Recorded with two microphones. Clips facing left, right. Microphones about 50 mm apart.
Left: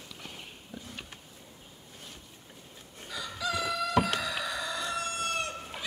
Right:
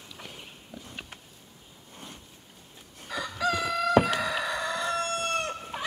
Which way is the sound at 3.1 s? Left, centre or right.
Right.